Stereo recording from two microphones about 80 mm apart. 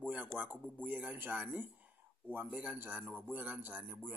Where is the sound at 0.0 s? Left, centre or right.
Centre.